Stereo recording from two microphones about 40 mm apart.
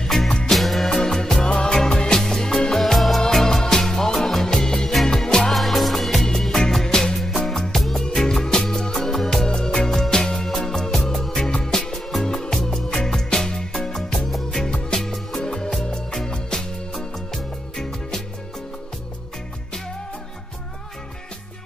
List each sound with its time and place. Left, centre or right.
0.5 s music: centre
2.8 s music: centre
5.5 s music: centre
9.5 s music: left
9.8 s music: centre